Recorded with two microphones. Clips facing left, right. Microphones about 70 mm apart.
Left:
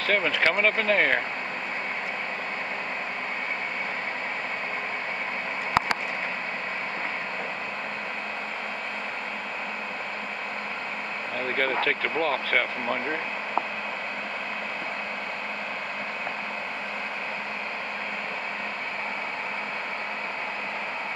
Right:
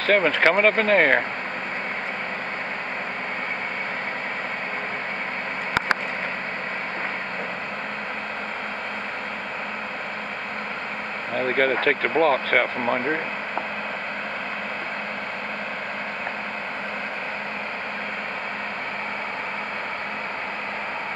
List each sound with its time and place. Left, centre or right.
0.0 s speech: right
11.3 s speech: right